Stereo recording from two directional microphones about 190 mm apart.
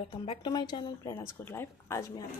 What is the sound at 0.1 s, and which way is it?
Speech, 25° left (ahead or behind).